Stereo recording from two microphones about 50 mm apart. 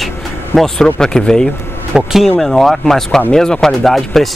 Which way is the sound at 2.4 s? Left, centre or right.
Centre.